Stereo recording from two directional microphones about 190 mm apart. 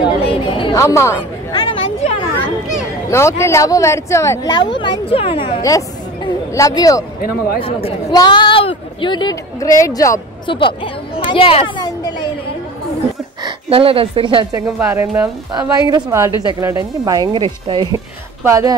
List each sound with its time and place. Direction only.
0.0 s chatter: 25° left (ahead or behind)
0.7 s speech: 15° left (ahead or behind)
1.5 s a sound: 20° left (ahead or behind)
3.1 s speech: 15° left (ahead or behind)
5.6 s speech: 20° left (ahead or behind)
7.2 s speech: 50° left (ahead or behind)
7.6 s speech: 25° left (ahead or behind)
13.4 s a woman's voice: 30° right (ahead or behind)